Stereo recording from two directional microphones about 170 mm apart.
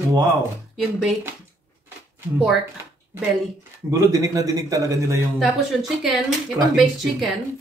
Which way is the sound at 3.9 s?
20° right (ahead or behind).